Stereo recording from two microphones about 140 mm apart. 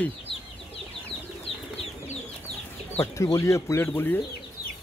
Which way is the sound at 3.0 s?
20° left (ahead or behind).